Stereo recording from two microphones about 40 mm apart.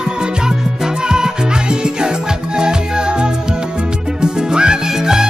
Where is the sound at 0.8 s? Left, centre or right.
Centre.